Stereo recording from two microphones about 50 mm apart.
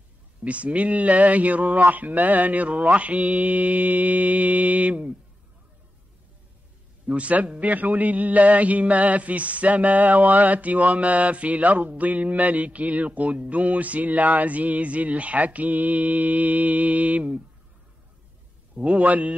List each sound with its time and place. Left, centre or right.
0.4 s a man's voice: right
7.1 s a man's voice: right
18.8 s a man's voice: right